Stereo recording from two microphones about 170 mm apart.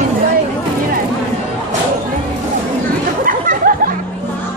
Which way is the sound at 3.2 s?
55° right (ahead or behind).